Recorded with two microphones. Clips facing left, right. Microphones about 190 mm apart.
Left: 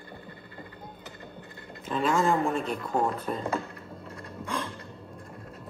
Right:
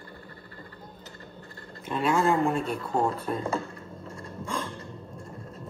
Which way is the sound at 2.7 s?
30° right (ahead or behind).